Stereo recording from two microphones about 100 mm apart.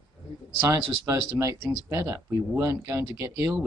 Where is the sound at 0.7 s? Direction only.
30° right (ahead or behind).